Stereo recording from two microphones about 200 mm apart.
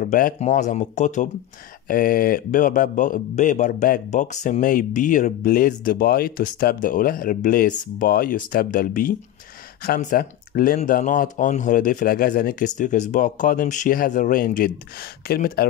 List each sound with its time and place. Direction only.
0.0 s speech: 45° left (ahead or behind)